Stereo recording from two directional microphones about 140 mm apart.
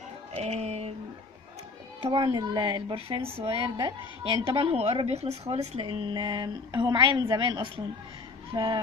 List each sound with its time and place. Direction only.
0.4 s music: 50° right (ahead or behind)
2.0 s speech: 35° right (ahead or behind)